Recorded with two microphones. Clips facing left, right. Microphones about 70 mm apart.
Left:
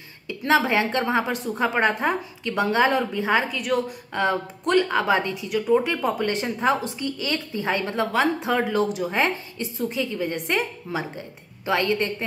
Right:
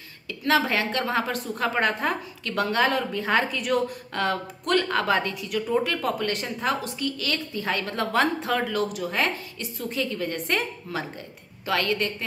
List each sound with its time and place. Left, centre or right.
0.3 s speech: left
3.5 s a woman's voice: centre
4.1 s speech: centre